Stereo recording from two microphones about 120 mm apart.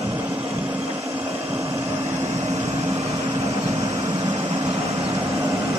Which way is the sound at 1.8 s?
60° right (ahead or behind).